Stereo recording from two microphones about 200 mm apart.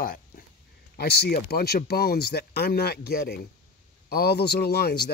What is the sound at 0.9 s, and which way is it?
Speech, 55° left (ahead or behind).